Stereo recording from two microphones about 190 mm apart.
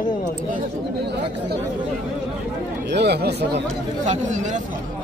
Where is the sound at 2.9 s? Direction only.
60° right (ahead or behind).